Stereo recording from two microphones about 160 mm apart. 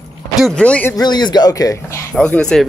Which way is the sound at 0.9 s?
25° left (ahead or behind).